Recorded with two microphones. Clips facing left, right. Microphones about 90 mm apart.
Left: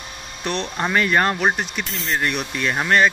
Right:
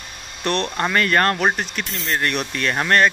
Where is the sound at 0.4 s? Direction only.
10° left (ahead or behind).